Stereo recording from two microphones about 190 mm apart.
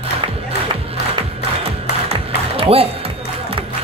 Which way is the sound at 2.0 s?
30° right (ahead or behind).